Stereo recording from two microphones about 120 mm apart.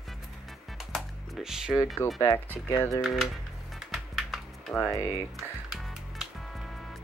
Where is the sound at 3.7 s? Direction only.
Centre (ahead or behind).